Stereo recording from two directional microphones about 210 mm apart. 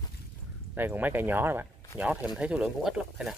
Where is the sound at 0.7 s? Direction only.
10° right (ahead or behind).